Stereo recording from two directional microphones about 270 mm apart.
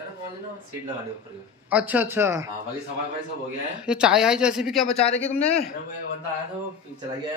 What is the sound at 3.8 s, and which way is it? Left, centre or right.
Speech, centre.